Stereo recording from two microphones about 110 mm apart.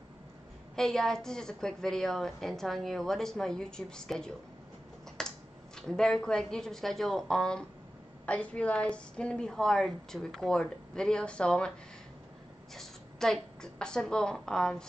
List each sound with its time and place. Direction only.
0.7 s a woman's voice: 5° left (ahead or behind)
5.2 s a sound: 5° left (ahead or behind)
5.8 s a woman's voice: 5° left (ahead or behind)
12.7 s a woman's voice: 5° left (ahead or behind)